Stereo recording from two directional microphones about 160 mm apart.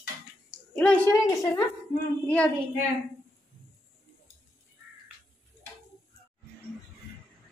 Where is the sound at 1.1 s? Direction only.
20° left (ahead or behind).